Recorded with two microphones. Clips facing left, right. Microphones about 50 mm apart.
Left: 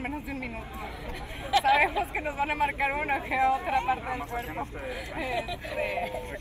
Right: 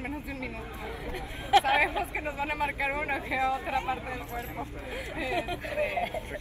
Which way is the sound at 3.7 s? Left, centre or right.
Left.